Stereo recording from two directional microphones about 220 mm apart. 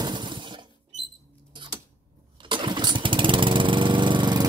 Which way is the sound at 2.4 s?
20° right (ahead or behind).